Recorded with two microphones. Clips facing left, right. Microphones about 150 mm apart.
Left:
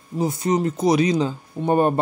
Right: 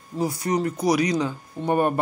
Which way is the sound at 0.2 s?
25° left (ahead or behind).